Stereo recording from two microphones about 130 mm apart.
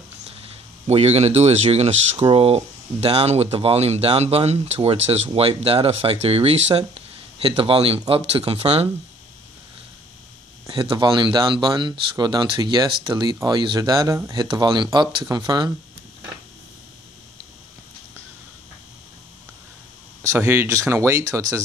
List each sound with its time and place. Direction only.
0.8 s speech: 55° right (ahead or behind)
10.7 s speech: 35° right (ahead or behind)
14.4 s speech: 35° right (ahead or behind)
20.2 s speech: 15° right (ahead or behind)